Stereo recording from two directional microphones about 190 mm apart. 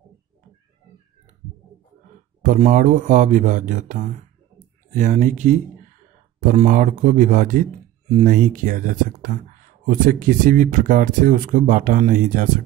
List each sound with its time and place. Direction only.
2.4 s speech: 45° right (ahead or behind)